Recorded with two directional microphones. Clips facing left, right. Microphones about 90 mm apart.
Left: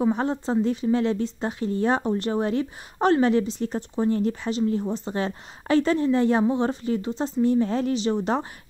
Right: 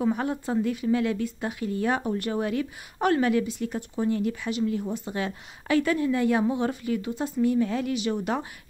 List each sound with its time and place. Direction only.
0.0 s speech: 30° left (ahead or behind)